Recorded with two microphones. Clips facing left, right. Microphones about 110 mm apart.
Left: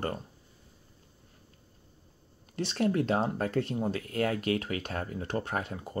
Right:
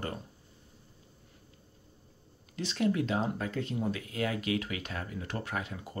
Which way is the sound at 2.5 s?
45° left (ahead or behind).